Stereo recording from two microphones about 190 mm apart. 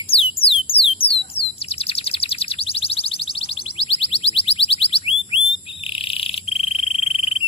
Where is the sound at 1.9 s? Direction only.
30° left (ahead or behind).